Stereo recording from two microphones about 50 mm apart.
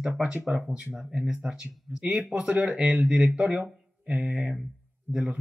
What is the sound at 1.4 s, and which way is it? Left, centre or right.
Speech, centre.